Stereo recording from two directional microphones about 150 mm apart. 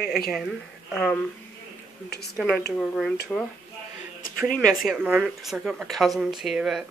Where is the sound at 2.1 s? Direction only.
90° left.